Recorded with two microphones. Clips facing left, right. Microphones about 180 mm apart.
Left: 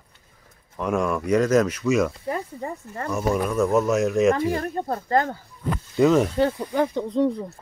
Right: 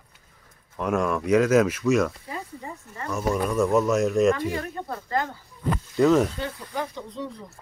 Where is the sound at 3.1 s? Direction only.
5° left (ahead or behind).